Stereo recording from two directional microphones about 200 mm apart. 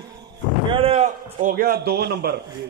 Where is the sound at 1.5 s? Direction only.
50° right (ahead or behind).